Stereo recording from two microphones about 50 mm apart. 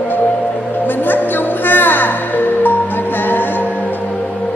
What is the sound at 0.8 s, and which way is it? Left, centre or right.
Music, left.